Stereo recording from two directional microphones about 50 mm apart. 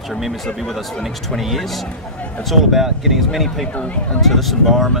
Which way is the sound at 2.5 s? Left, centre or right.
Centre.